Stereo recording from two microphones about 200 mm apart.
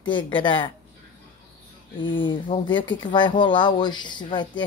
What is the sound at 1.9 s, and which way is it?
Speech, 25° left (ahead or behind).